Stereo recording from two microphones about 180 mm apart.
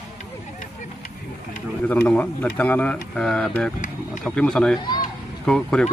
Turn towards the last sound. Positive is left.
turn(degrees=0)  # may be behind; listen again after turning